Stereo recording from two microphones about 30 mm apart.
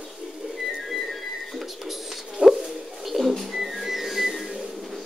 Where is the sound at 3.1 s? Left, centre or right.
Centre.